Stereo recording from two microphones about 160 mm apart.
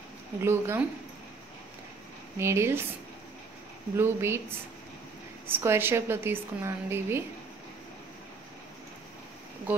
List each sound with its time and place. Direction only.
0.4 s a woman's voice: 15° right (ahead or behind)
2.3 s a woman's voice: 15° right (ahead or behind)
3.9 s a woman's voice: 15° right (ahead or behind)